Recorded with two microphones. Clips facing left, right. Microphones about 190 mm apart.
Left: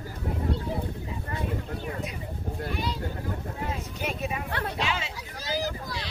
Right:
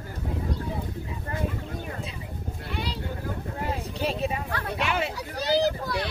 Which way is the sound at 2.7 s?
65° right (ahead or behind).